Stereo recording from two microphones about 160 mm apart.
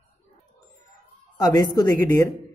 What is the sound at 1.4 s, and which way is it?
Speech, 25° left (ahead or behind).